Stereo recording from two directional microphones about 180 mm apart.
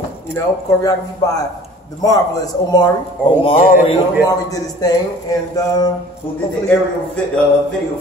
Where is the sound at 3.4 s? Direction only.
30° left (ahead or behind).